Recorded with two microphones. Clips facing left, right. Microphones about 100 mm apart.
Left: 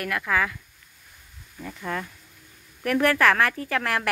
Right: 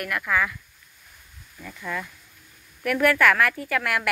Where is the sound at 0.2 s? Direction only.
25° left (ahead or behind).